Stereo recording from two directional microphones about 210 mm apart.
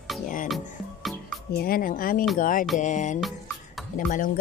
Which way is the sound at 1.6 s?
45° left (ahead or behind).